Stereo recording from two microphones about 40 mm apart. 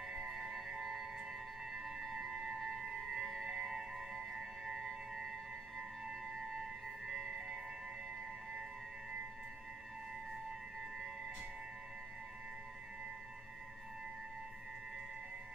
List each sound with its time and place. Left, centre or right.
0.2 s music: centre